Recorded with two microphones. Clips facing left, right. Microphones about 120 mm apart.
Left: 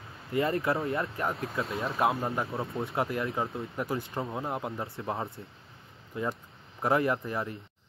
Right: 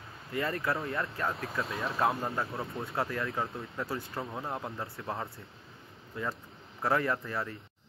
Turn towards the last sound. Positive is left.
turn(degrees=20)  # may be behind; listen again after turning